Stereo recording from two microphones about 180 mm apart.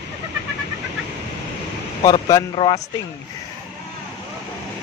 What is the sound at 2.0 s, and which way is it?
Speech, 20° left (ahead or behind).